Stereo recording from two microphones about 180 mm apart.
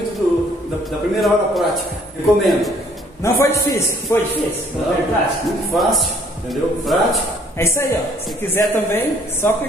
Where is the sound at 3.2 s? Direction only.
15° left (ahead or behind).